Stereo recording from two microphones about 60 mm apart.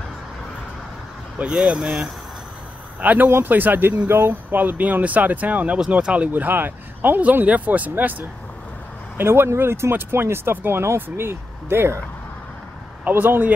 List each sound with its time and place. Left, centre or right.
1.4 s speech: centre
3.0 s speech: right
9.2 s speech: right
13.0 s speech: right